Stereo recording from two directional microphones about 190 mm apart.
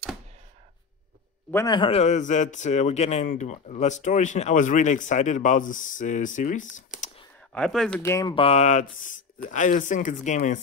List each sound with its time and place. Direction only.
1.5 s speech: 15° left (ahead or behind)
1.8 s speech: 35° left (ahead or behind)
7.5 s speech: 5° left (ahead or behind)
8.0 s speech: 15° left (ahead or behind)
8.4 s speech: 35° left (ahead or behind)